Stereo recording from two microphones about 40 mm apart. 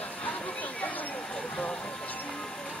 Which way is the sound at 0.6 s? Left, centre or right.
Left.